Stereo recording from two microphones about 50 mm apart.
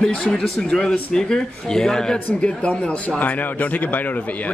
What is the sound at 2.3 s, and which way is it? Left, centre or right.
Speech, left.